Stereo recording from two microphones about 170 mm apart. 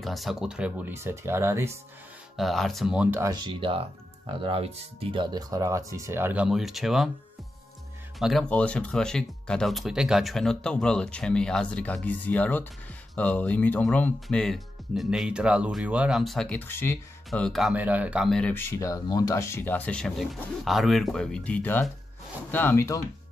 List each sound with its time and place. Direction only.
0.0 s speech: centre (ahead or behind)
2.3 s speech: centre (ahead or behind)
8.2 s speech: centre (ahead or behind)
17.3 s speech: centre (ahead or behind)
18.5 s speech: 15° left (ahead or behind)